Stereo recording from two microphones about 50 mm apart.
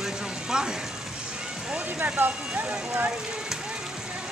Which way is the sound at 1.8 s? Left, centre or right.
Right.